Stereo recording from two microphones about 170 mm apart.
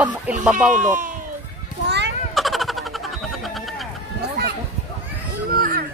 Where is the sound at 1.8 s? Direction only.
90° right.